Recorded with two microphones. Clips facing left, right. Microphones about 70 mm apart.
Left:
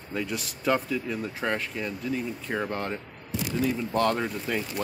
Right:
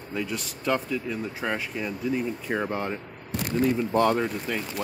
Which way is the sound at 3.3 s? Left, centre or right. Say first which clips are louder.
Right 3 dB; right.